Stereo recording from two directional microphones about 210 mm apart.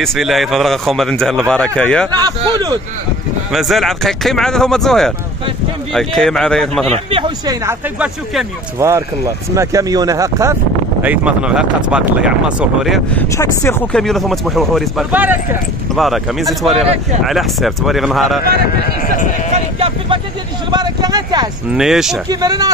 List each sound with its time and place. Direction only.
0.0 s speech: centre (ahead or behind)
2.0 s speech: 20° right (ahead or behind)
3.5 s speech: centre (ahead or behind)
6.9 s speech: 25° right (ahead or behind)
8.7 s speech: 15° right (ahead or behind); by 13.7 s 15° left (ahead or behind)
13.9 s speech: centre (ahead or behind)
16.8 s speech: 30° right (ahead or behind)
17.2 s speech: centre (ahead or behind)
19.0 s speech: 40° left (ahead or behind)
19.5 s vehicle: 25° right (ahead or behind)
20.7 s speech: 20° right (ahead or behind)
21.7 s speech: centre (ahead or behind)
22.3 s speech: 20° right (ahead or behind)